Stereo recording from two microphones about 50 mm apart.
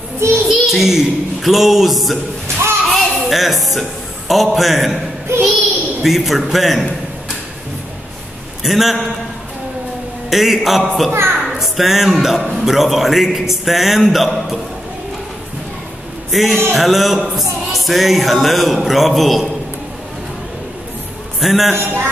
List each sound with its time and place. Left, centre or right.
0.5 s a man's voice: centre
2.4 s thump: right
2.9 s music: centre
4.3 s a man's voice: centre
6.0 s a man's voice: centre
8.6 s a man's voice: centre
10.3 s a man's voice: centre
11.1 s a child's voice: right
11.4 s a man's voice: centre
16.3 s a man's voice: centre
21.4 s a man's voice: centre
21.7 s a man's voice: right